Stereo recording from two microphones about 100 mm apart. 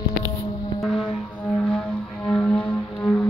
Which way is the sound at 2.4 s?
15° left (ahead or behind).